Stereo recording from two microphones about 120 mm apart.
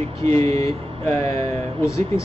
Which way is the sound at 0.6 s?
25° left (ahead or behind).